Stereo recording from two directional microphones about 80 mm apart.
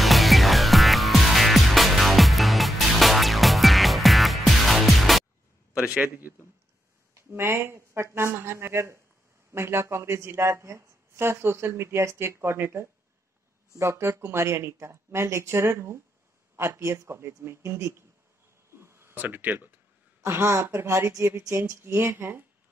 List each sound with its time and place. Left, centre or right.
0.0 s music: centre
5.8 s a man's voice: centre
7.2 s speech: right
18.8 s a sound: right
20.2 s speech: right